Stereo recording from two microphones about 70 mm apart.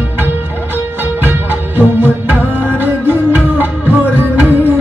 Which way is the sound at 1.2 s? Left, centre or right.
Right.